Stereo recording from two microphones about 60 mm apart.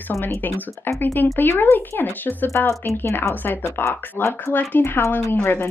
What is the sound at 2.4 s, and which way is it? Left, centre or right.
Speech, left.